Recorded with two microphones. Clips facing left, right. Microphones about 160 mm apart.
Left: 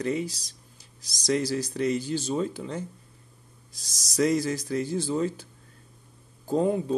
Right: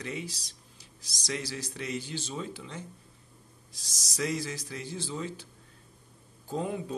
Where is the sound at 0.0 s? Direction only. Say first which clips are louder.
Left 9 dB; 40° left (ahead or behind).